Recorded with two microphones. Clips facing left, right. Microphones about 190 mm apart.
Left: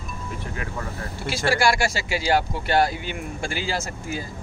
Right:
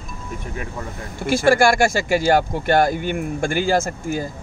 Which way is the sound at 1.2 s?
50° right (ahead or behind).